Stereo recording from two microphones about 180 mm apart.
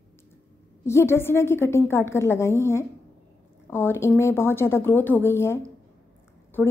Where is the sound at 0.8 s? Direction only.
15° left (ahead or behind).